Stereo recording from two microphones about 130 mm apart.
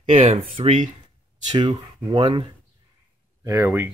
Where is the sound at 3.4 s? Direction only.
20° right (ahead or behind).